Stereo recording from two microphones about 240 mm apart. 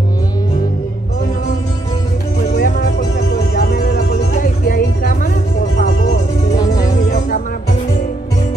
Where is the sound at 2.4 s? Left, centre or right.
Left.